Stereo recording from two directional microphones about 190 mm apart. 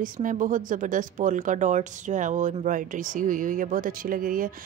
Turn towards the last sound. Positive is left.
turn(degrees=-45)  # may be behind; listen again after turning